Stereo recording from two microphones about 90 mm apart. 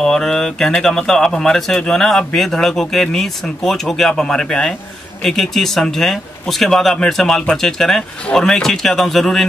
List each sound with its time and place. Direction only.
0.0 s speech: 5° left (ahead or behind)